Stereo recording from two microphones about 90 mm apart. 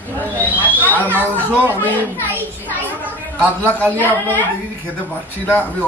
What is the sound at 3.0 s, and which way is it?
Speech, 20° right (ahead or behind).